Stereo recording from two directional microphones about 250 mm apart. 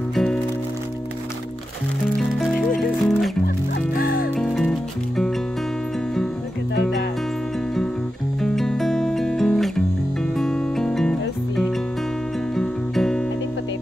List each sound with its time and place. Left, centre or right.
0.1 s music: centre
2.8 s music: centre
3.9 s music: left
4.4 s music: centre
8.4 s music: centre